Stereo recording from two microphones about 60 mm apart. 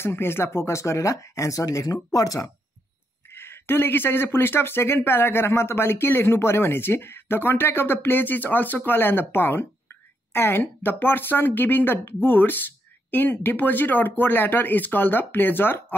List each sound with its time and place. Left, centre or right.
0.0 s speech: left
3.3 s speech: left